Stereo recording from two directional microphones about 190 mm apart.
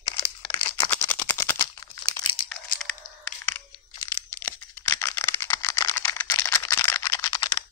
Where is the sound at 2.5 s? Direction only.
5° left (ahead or behind).